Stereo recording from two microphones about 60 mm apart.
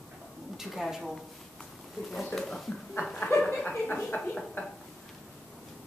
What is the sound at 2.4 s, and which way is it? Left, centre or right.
Speech, centre.